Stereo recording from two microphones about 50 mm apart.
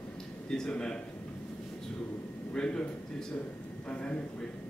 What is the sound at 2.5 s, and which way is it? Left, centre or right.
Speech, centre.